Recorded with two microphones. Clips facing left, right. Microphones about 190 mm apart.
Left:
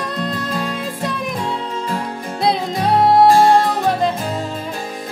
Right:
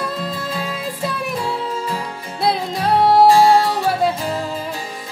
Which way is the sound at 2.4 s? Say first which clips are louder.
Left 1 dB; centre (ahead or behind).